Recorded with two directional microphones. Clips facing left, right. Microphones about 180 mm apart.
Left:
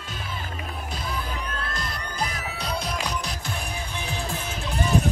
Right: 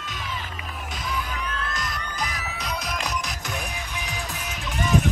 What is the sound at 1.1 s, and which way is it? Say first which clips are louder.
Music: right 3 dB; 30° left (ahead or behind).